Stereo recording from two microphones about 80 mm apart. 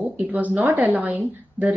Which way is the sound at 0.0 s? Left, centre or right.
Right.